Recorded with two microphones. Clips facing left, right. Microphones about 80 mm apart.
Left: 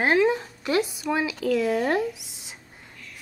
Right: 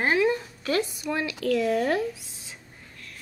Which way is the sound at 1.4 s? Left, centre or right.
Centre.